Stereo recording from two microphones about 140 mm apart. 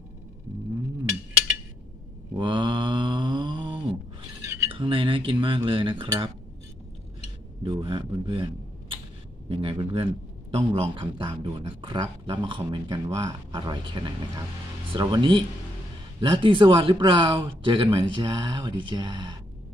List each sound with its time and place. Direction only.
2.3 s mantra: 35° right (ahead or behind)
4.6 s speech: 40° right (ahead or behind)
7.6 s speech: 40° right (ahead or behind)